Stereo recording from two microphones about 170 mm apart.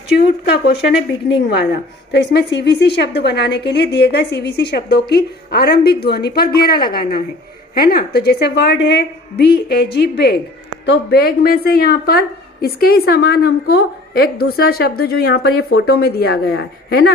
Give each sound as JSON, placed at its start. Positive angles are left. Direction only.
{"t": 0.1, "sound": "a woman's voice", "side_deg": 75}
{"t": 1.3, "sound": "a woman's voice", "side_deg": 90}